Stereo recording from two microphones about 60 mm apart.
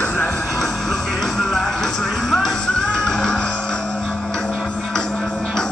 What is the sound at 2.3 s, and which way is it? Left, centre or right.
Music, centre.